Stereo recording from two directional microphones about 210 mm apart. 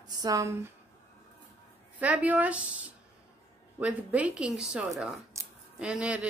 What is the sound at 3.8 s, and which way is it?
A woman's voice, 5° right (ahead or behind).